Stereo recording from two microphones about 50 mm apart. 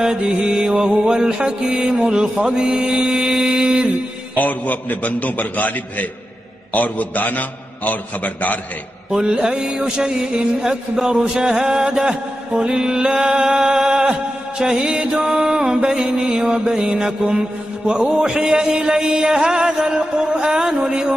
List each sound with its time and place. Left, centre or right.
0.0 s music: centre
3.4 s music: centre
4.4 s a man's voice: left
9.1 s music: centre